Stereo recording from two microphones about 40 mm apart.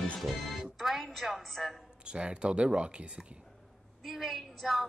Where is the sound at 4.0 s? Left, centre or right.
Centre.